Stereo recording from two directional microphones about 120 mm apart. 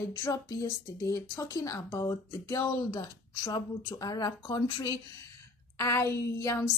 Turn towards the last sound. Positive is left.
turn(degrees=25)  # may be behind; listen again after turning